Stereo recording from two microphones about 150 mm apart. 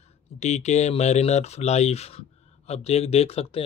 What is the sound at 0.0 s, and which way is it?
Speech, 50° left (ahead or behind).